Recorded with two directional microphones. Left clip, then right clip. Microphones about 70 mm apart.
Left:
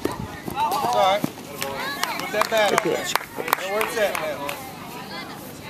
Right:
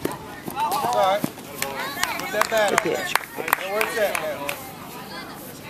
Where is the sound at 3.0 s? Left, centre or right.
Right.